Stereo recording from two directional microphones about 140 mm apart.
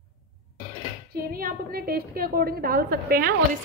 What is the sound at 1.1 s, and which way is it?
A woman's voice, 90° right.